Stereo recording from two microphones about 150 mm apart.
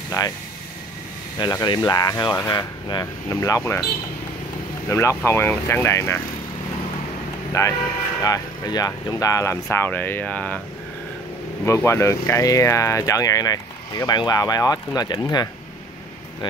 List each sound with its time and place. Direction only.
1.4 s speech: 25° left (ahead or behind)
4.8 s speech: 15° left (ahead or behind)
7.6 s speech: 20° left (ahead or behind)
11.6 s speech: 20° left (ahead or behind)